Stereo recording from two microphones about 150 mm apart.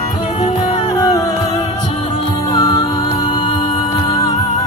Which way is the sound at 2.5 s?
25° left (ahead or behind).